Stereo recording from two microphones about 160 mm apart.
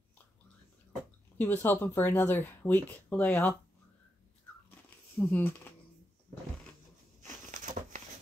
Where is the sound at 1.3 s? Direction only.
15° left (ahead or behind).